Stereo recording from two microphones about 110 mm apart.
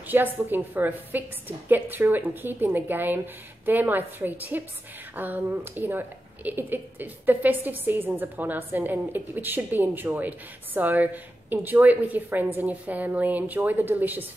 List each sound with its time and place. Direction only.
0.1 s a woman's voice: 15° right (ahead or behind)